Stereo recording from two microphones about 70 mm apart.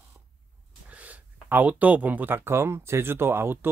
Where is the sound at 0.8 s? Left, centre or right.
Centre; by 3.5 s right.